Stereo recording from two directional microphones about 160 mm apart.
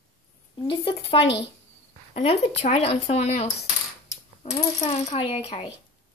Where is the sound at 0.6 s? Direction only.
35° left (ahead or behind).